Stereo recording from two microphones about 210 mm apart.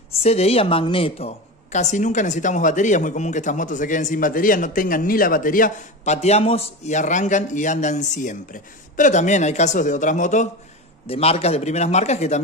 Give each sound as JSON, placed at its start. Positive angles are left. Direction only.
{"t": 0.1, "sound": "a woman's voice", "side_deg": 30}
{"t": 6.1, "sound": "a woman's voice", "side_deg": 30}